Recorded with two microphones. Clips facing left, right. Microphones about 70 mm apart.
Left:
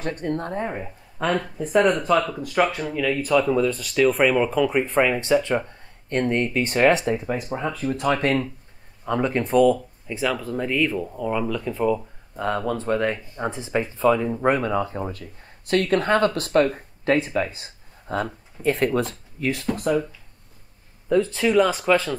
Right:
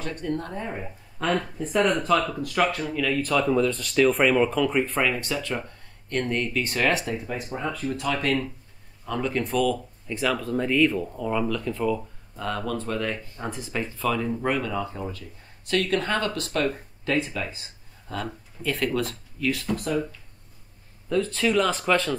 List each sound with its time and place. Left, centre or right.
0.0 s speech: left
1.2 s speech: centre
5.3 s speech: left
10.0 s speech: centre; by 19.9 s left
21.1 s speech: centre